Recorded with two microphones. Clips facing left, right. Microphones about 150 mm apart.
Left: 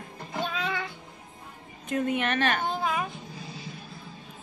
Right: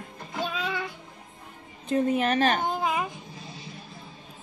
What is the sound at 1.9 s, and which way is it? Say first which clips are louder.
Speech: right 3 dB; 35° right (ahead or behind).